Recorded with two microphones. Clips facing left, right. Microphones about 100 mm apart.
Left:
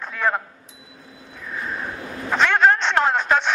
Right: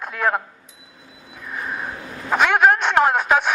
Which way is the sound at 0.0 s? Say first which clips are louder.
Right 1 dB; 5° right (ahead or behind).